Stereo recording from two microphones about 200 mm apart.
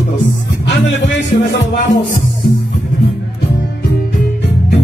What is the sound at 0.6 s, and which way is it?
Speech, 60° left (ahead or behind).